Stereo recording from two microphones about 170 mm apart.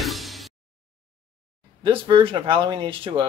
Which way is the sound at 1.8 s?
30° right (ahead or behind).